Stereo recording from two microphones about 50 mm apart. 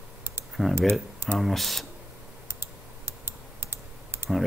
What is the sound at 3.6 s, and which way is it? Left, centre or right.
Computer keyboard, right.